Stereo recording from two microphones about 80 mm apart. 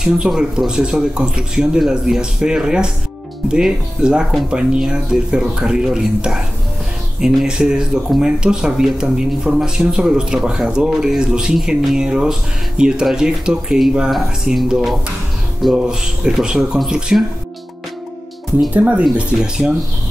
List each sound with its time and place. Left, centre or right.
0.0 s speech: centre
18.7 s speech: centre